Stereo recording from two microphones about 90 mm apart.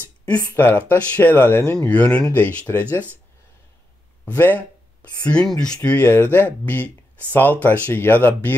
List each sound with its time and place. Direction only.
0.3 s speech: 20° left (ahead or behind)
1.8 s speech: 15° left (ahead or behind)
4.3 s speech: 20° left (ahead or behind)